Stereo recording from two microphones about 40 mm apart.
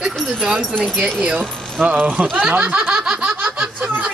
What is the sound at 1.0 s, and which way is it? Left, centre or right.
Speech, right.